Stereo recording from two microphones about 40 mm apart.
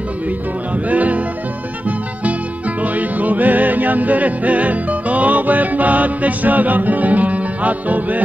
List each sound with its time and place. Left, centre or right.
0.8 s music: right
2.8 s music: right